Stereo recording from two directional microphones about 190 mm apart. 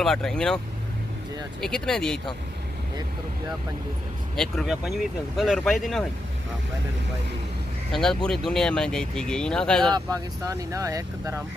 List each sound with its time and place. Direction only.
0.0 s speech: 5° left (ahead or behind)
1.6 s speech: 5° left (ahead or behind)
4.4 s speech: centre (ahead or behind)
7.9 s speech: 5° left (ahead or behind)
9.9 s speech: 20° right (ahead or behind)